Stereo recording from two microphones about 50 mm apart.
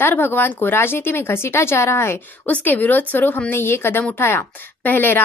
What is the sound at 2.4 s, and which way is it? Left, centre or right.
Speech, left.